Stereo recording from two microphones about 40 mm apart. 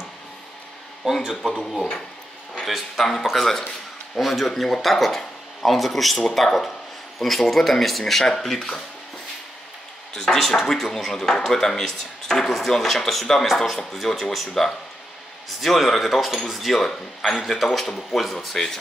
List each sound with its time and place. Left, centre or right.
1.0 s a man's voice: centre
1.4 s speech: centre
10.1 s speech: centre